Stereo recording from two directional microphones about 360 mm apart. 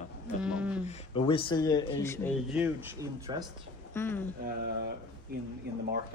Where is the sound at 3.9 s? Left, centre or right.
Centre.